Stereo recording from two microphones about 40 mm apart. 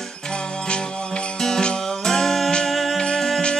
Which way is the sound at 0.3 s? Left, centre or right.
Left.